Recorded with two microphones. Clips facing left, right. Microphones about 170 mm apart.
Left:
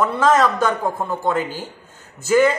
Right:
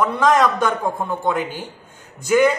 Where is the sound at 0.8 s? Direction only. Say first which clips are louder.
Even; 5° left (ahead or behind).